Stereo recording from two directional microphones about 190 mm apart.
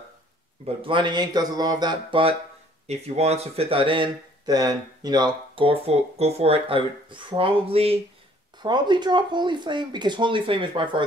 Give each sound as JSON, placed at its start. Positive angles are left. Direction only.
{"t": 0.7, "sound": "speech", "side_deg": -25}